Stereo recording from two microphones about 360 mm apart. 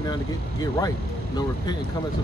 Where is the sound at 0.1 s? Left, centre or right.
Centre.